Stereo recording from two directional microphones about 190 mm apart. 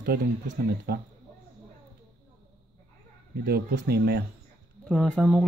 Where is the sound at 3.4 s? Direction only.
55° right (ahead or behind).